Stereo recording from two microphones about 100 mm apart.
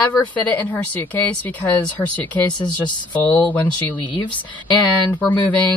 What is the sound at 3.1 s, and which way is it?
Speech, 15° left (ahead or behind).